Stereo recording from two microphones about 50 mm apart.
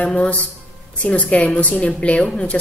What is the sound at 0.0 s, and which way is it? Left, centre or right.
Speech, centre.